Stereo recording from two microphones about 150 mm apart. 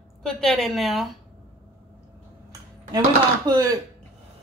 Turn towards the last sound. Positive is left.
turn(degrees=-25)  # may be behind; listen again after turning